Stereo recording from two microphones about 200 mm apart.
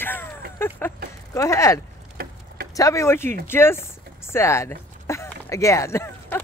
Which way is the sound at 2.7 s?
15° left (ahead or behind).